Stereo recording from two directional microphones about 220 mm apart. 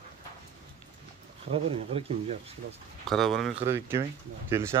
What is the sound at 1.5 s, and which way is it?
Speech, 25° right (ahead or behind).